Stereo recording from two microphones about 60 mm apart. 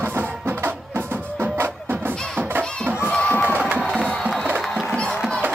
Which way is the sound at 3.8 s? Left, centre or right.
Centre.